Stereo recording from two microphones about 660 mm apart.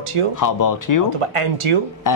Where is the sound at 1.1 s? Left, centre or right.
Right.